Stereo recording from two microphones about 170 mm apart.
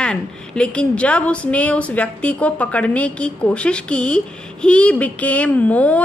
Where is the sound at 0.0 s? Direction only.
5° left (ahead or behind).